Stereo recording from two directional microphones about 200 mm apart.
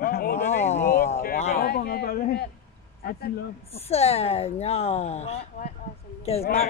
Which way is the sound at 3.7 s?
30° left (ahead or behind).